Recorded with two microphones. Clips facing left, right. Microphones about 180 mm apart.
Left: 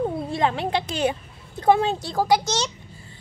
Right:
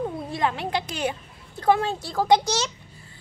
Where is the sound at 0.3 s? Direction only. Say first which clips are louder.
Left 1 dB; 25° left (ahead or behind).